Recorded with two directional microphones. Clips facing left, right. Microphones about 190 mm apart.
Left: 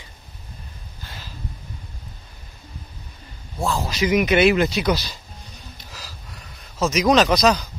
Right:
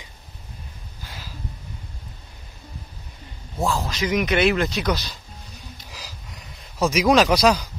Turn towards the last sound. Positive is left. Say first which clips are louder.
# even
turn(degrees=-10)  # may be behind; listen again after turning